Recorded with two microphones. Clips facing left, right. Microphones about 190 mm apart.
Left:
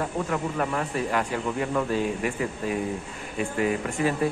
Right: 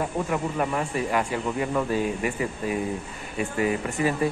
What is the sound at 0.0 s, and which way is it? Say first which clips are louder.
A man's voice: right 1 dB; 10° right (ahead or behind).